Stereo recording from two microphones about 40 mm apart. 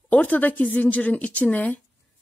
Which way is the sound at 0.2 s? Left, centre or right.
Left.